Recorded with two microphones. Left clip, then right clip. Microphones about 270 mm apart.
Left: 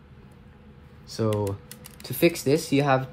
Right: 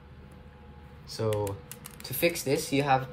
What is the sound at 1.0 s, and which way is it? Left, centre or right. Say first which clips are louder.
Speech: left 3 dB; centre.